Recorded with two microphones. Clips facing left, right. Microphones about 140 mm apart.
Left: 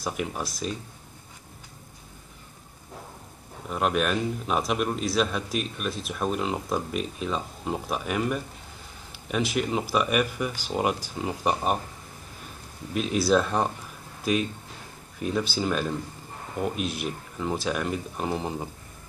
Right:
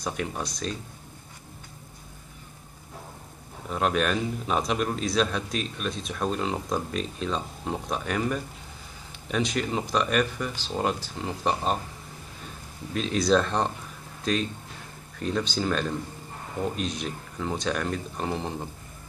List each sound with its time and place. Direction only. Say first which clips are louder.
0.0 s a man's voice: left 1 dB; 5° left (ahead or behind)
3.6 s a man's voice: even; 5° left (ahead or behind)
12.9 s a man's voice: even; 5° left (ahead or behind)